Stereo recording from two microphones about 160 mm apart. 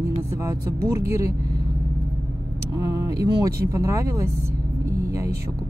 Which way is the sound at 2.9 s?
20° right (ahead or behind).